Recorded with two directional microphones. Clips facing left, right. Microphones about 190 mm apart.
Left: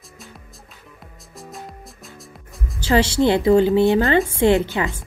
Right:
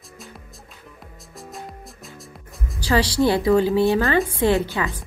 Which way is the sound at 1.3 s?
Centre (ahead or behind).